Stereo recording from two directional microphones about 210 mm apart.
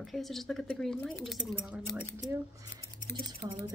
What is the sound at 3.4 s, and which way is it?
Speech, 20° right (ahead or behind).